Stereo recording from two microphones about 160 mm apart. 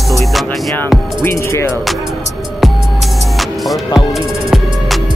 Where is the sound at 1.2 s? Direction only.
15° left (ahead or behind).